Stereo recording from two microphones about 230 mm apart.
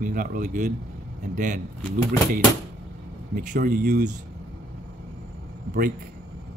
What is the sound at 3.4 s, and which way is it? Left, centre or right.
Speech, right.